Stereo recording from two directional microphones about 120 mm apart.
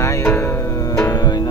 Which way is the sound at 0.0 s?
20° left (ahead or behind).